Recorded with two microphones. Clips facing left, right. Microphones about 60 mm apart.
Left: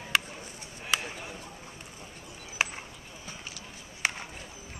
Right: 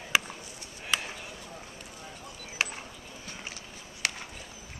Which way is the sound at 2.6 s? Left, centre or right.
Centre.